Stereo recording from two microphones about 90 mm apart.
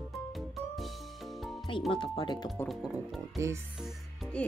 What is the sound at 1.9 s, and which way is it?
Speech, 75° left (ahead or behind).